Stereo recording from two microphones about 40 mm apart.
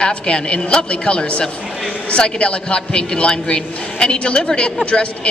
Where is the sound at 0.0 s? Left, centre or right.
Left.